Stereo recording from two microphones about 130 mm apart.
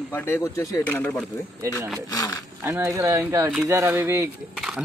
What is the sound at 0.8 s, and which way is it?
Speech, 10° left (ahead or behind).